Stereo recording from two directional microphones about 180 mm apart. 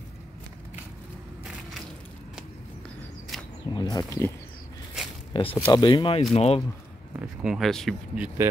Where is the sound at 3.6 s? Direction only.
25° left (ahead or behind).